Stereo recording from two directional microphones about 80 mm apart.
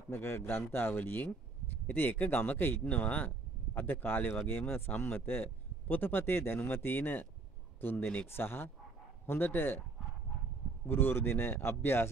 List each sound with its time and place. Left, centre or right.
0.1 s speech: left
10.9 s speech: left